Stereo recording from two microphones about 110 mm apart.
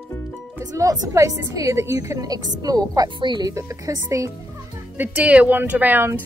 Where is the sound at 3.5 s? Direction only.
30° right (ahead or behind).